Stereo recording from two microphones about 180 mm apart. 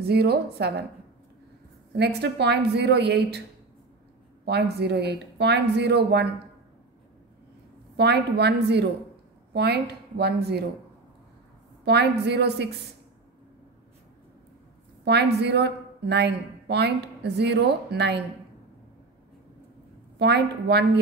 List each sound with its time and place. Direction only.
0.0 s speech: 65° right (ahead or behind)
2.0 s a woman's voice: 65° right (ahead or behind)
4.5 s speech: 65° right (ahead or behind)
7.9 s a woman's voice: 65° right (ahead or behind)
11.8 s a woman's voice: 70° right (ahead or behind)
15.0 s a woman's voice: 70° right (ahead or behind)
20.2 s a woman's voice: 70° right (ahead or behind)